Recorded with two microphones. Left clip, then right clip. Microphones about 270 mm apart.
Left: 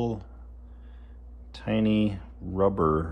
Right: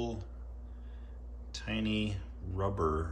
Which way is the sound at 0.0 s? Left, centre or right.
Left.